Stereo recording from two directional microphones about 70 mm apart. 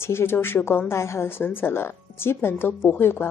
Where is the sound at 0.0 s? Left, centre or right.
Left.